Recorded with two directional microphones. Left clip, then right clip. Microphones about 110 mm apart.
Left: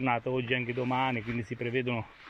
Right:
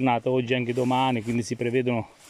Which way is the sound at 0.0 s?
50° right (ahead or behind).